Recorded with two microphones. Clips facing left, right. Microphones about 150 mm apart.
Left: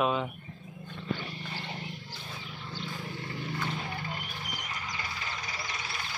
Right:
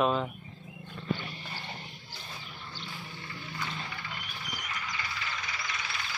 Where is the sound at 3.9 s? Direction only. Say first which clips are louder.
Left 4 dB; 40° left (ahead or behind).